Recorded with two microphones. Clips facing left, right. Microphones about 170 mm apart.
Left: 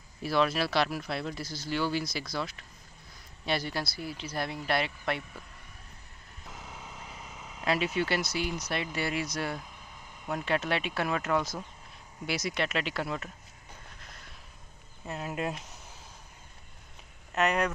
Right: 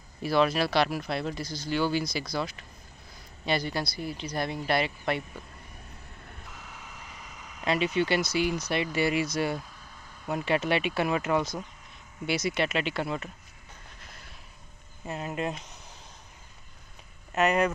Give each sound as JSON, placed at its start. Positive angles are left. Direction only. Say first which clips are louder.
{"t": 0.2, "sound": "speech", "louder": "right 3 dB", "side_deg": 0}
{"t": 6.5, "sound": "vehicle", "louder": "left 6 dB", "side_deg": 25}
{"t": 7.6, "sound": "speech", "louder": "right 3 dB", "side_deg": 5}
{"t": 14.0, "sound": "a sound", "louder": "right 1 dB", "side_deg": -5}
{"t": 15.0, "sound": "speech", "louder": "right 2 dB", "side_deg": 0}
{"t": 17.3, "sound": "speech", "louder": "right 3 dB", "side_deg": 0}